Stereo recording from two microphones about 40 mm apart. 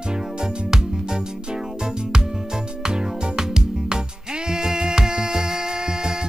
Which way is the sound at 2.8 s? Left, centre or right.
Centre.